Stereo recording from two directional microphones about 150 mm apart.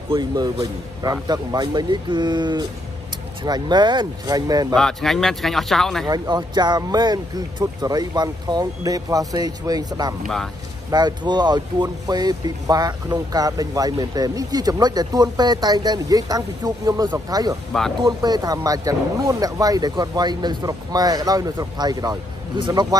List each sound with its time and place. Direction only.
0.1 s speech: 30° right (ahead or behind)
4.7 s speech: centre (ahead or behind)
6.0 s speech: 25° right (ahead or behind)
10.2 s speech: centre (ahead or behind)
10.9 s speech: 30° right (ahead or behind)